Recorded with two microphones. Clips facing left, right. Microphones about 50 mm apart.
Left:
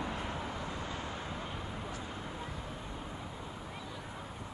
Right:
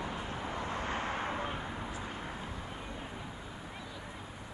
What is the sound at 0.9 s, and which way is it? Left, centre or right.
Vehicle, right.